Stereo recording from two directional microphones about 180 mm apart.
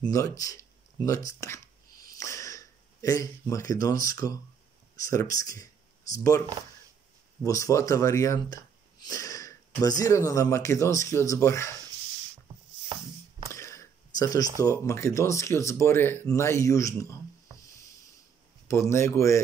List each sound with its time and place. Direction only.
0.1 s a sound: 20° left (ahead or behind)
5.0 s speech: 20° left (ahead or behind)
7.4 s speech: 20° left (ahead or behind)
13.5 s speech: 15° left (ahead or behind)
18.7 s speech: 15° left (ahead or behind)